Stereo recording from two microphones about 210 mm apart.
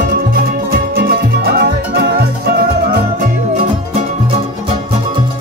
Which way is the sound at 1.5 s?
50° right (ahead or behind).